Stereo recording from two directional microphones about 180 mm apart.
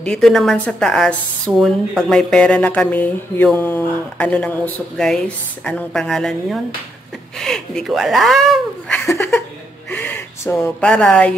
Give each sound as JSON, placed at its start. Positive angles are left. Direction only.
{"t": 0.0, "sound": "a woman's voice", "side_deg": 0}
{"t": 9.0, "sound": "a sound", "side_deg": 15}
{"t": 9.8, "sound": "speech", "side_deg": 10}